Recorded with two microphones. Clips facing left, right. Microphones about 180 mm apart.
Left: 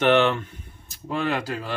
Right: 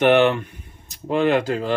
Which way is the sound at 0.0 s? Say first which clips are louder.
Right 4 dB; 15° right (ahead or behind).